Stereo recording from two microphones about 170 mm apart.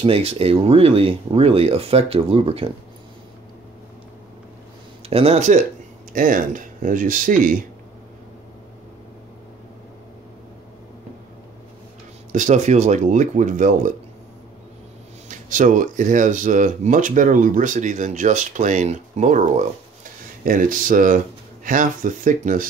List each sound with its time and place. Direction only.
0.0 s speech: 35° right (ahead or behind)
5.1 s speech: 35° right (ahead or behind)
6.1 s speech: 55° right (ahead or behind)
12.3 s speech: 45° right (ahead or behind)
15.2 s speech: 50° right (ahead or behind)